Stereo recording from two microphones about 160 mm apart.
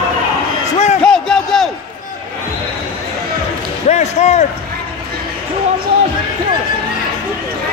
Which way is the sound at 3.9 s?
45° left (ahead or behind).